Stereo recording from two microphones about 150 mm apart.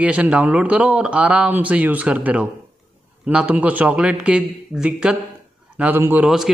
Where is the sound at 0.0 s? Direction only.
10° right (ahead or behind).